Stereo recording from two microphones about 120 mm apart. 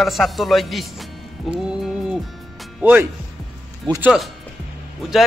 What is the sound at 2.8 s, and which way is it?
Speech, 15° right (ahead or behind).